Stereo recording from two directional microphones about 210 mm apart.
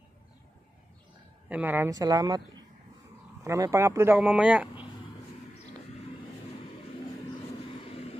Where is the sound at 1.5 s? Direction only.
5° right (ahead or behind).